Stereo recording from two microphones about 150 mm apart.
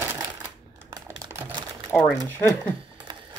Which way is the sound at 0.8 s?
25° right (ahead or behind).